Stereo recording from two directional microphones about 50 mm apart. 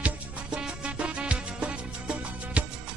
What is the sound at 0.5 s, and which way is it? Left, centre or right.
Music, centre.